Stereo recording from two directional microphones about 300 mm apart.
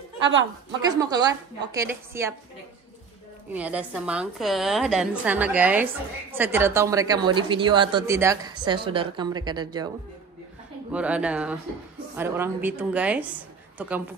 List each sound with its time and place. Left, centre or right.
0.2 s a woman's voice: right
0.7 s a woman's voice: centre
3.5 s a woman's voice: centre
10.9 s a woman's voice: centre